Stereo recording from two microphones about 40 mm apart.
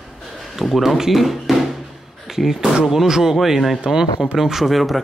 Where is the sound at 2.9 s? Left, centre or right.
Centre.